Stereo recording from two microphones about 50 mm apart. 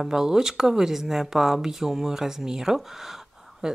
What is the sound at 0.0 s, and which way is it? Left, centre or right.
Speech, centre.